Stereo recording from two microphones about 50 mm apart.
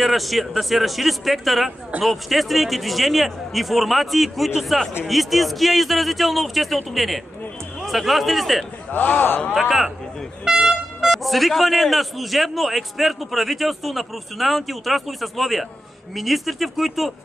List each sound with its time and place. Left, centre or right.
0.0 s a man's voice: centre
8.9 s a man's voice: left
9.5 s a man's voice: centre
10.4 s vehicle horn: centre
11.2 s a man's voice: centre